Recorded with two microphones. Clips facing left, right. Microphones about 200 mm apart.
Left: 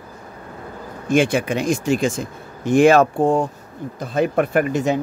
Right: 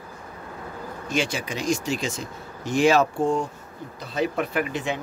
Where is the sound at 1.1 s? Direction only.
55° left (ahead or behind).